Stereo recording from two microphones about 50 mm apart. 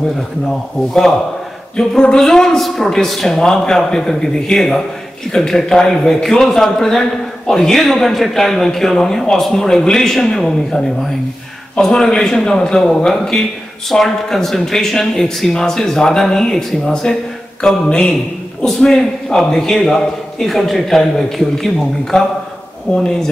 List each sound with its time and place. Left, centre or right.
1.8 s a man's voice: centre
17.8 s speech: centre
18.7 s a man's voice: centre